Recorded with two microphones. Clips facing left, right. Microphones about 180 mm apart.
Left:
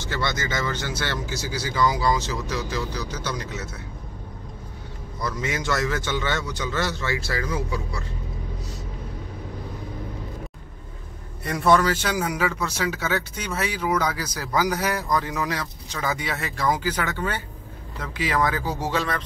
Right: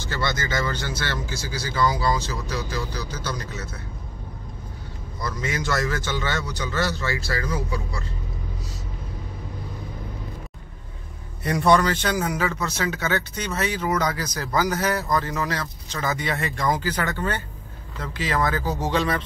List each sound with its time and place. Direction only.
0.1 s speech: 15° left (ahead or behind)
5.2 s a man's voice: 20° left (ahead or behind)
11.4 s speech: centre (ahead or behind)